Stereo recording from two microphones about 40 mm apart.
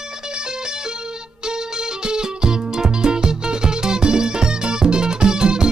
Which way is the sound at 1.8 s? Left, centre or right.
Centre.